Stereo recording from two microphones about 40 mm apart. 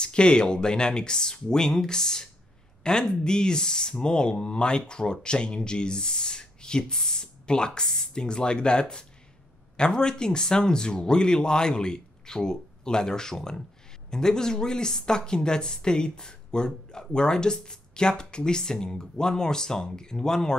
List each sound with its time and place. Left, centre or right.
0.0 s a woman's voice: left